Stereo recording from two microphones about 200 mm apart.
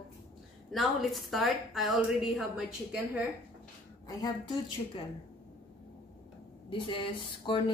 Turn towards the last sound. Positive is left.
turn(degrees=25)  # may be behind; listen again after turning